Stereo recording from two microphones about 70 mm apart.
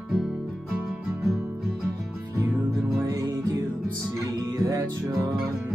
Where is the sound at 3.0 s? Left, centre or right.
Right.